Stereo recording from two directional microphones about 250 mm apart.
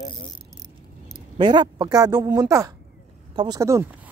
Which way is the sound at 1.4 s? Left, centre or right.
Centre.